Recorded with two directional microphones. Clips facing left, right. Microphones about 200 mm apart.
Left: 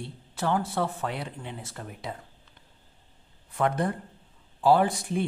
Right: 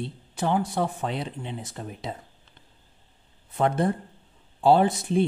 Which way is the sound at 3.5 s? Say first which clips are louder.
Right 3 dB; 25° right (ahead or behind).